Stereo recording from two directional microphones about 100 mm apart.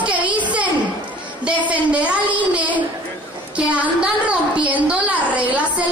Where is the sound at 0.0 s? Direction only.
15° right (ahead or behind).